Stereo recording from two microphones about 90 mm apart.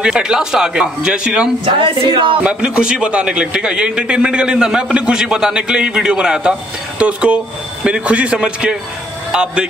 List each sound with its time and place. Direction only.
0.0 s a man's voice: 10° right (ahead or behind)
1.7 s a woman's voice: 65° right (ahead or behind)
2.4 s a man's voice: 10° right (ahead or behind)